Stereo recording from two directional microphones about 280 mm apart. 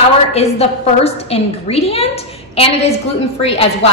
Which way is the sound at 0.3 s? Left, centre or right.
Left.